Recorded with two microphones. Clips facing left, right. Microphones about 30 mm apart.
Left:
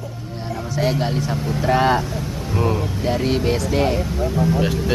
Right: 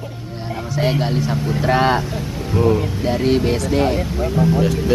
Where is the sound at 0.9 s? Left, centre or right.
Centre.